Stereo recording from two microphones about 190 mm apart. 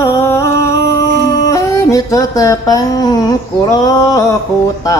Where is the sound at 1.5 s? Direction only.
15° left (ahead or behind).